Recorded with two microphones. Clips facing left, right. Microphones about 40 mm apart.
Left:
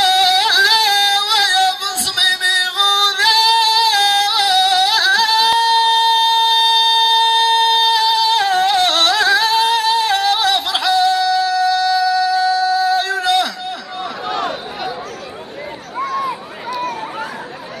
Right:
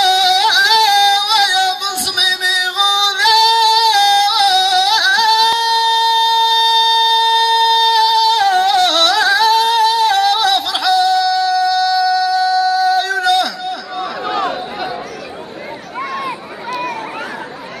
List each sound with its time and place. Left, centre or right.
0.0 s singing: left
9.4 s yodeling: left
14.2 s a sound: centre